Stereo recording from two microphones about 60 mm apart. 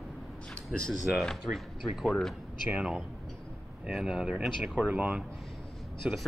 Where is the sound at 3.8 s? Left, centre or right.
Centre.